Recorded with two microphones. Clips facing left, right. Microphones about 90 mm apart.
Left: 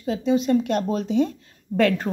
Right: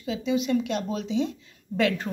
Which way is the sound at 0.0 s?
40° left (ahead or behind).